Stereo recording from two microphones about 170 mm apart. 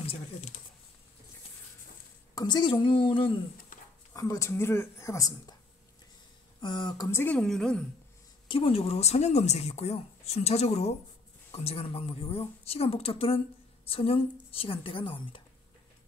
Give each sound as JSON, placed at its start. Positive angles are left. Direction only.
{"t": 0.0, "sound": "a sound", "side_deg": 40}
{"t": 2.3, "sound": "a woman's voice", "side_deg": 25}
{"t": 4.1, "sound": "speech", "side_deg": 20}
{"t": 6.6, "sound": "a woman's voice", "side_deg": 25}
{"t": 7.3, "sound": "a woman's voice", "side_deg": 0}
{"t": 8.5, "sound": "speech", "side_deg": 30}